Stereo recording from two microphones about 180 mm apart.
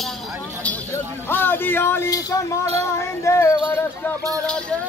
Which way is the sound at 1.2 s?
10° left (ahead or behind).